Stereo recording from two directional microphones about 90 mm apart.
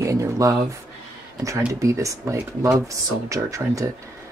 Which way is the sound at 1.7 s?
35° right (ahead or behind).